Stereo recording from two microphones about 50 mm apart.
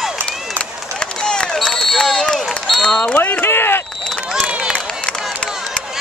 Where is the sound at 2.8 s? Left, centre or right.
Centre.